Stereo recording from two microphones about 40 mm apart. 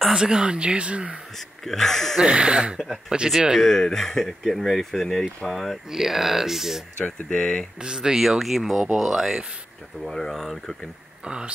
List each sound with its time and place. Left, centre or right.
0.1 s speech: centre
1.6 s speech: centre
2.2 s speech: right
3.1 s speech: centre
3.5 s speech: centre
7.1 s speech: left
7.8 s speech: centre
8.2 s speech: centre
10.0 s speech: centre
11.2 s speech: right